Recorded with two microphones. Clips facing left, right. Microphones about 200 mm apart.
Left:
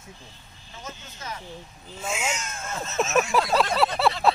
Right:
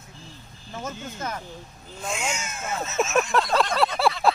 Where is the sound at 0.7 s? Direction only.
50° right (ahead or behind).